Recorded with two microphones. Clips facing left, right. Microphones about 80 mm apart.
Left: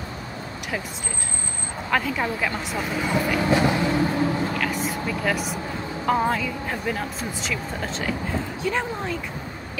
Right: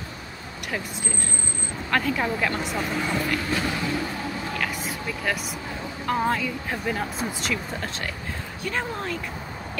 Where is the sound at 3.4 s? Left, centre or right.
Left.